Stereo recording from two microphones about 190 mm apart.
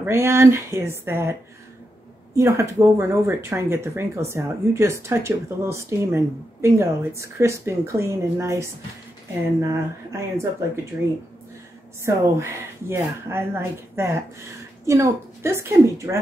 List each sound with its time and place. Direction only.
0.0 s speech: 15° right (ahead or behind)
2.3 s speech: 15° right (ahead or behind)
12.0 s speech: 15° right (ahead or behind)